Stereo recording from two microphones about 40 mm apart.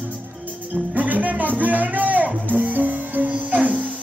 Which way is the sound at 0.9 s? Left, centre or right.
Right.